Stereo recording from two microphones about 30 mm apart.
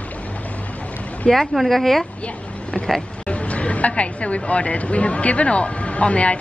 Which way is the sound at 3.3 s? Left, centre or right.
Left.